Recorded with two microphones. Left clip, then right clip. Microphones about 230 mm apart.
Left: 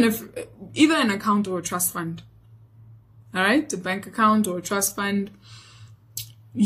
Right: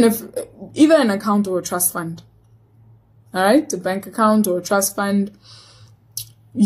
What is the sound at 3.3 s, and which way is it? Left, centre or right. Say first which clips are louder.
Speech: right 6 dB; centre.